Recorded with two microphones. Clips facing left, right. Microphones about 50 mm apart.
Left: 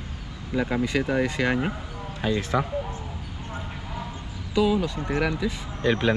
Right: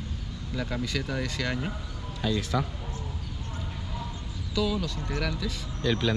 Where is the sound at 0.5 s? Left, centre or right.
Left.